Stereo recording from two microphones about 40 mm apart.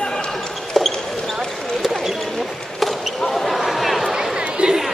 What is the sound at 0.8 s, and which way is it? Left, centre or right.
Basketball bounce, centre.